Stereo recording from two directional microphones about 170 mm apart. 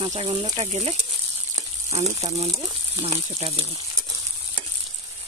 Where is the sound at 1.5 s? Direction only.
20° right (ahead or behind).